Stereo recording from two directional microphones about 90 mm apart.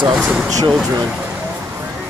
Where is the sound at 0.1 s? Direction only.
10° right (ahead or behind).